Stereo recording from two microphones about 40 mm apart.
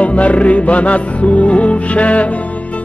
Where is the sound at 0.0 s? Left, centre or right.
Left.